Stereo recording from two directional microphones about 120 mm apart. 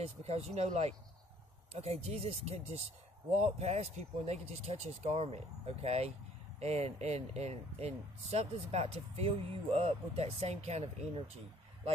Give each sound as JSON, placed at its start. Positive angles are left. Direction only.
{"t": 0.0, "sound": "speech", "side_deg": -60}